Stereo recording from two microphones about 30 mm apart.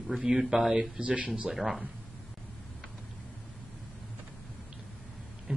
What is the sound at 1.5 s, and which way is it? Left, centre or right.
Speech, centre.